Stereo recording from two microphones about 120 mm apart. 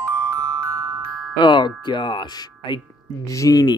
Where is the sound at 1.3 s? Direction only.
40° left (ahead or behind).